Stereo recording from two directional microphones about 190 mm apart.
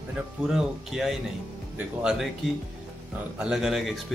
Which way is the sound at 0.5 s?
Centre (ahead or behind).